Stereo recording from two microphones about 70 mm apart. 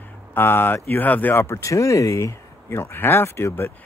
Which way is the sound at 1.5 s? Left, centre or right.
Left.